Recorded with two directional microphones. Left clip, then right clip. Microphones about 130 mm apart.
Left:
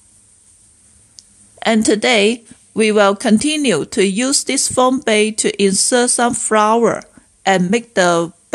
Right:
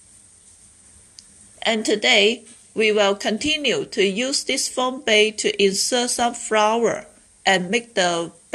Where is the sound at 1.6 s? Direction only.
50° left (ahead or behind).